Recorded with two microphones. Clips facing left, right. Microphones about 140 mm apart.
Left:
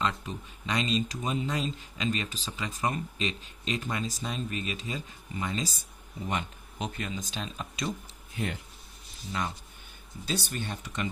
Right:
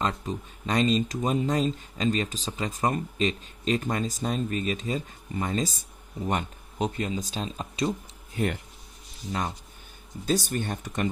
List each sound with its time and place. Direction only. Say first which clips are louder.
0.0 s speech: right 3 dB; 40° right (ahead or behind)
10.2 s speech: right 7 dB; 45° right (ahead or behind)